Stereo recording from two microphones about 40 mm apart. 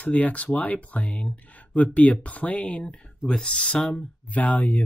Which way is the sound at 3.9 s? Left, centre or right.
Left.